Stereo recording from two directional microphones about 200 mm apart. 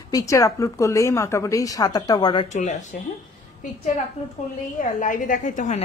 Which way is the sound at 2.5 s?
35° left (ahead or behind).